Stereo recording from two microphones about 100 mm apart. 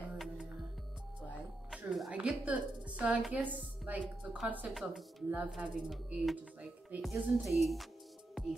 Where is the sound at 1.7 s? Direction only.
5° right (ahead or behind).